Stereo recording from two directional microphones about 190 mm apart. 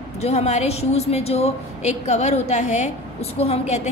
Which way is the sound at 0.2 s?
35° left (ahead or behind).